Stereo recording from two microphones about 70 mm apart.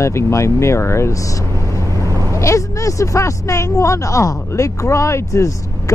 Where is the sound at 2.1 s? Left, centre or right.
Right.